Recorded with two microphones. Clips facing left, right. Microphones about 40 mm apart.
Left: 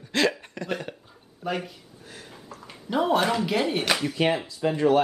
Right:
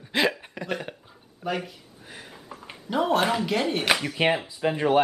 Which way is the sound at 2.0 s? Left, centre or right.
Centre.